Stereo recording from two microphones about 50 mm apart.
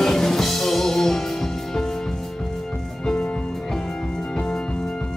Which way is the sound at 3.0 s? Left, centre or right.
Centre.